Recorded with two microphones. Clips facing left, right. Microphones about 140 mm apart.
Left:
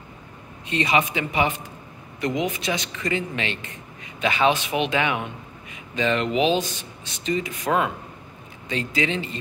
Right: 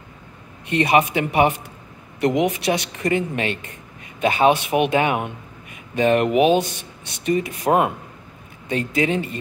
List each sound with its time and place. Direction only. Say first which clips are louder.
0.7 s speech: right 5 dB; 60° right (ahead or behind)
8.6 s speech: right 4 dB; 50° right (ahead or behind)